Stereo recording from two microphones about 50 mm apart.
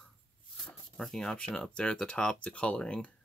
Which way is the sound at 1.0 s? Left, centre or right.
Centre.